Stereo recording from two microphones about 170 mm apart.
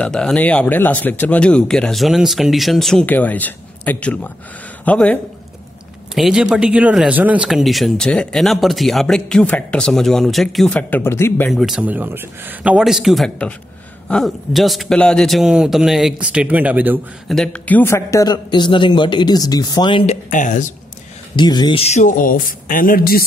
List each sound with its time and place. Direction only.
0.0 s speech: 5° left (ahead or behind)
6.1 s a man's voice: 5° right (ahead or behind); by 11.5 s 15° left (ahead or behind)
11.5 s a man's voice: 5° right (ahead or behind)
17.3 s a man's voice: 5° left (ahead or behind); by 20.2 s 30° left (ahead or behind)
20.2 s speech: 50° left (ahead or behind)
21.4 s speech: 25° left (ahead or behind); by 23.2 s 60° left (ahead or behind)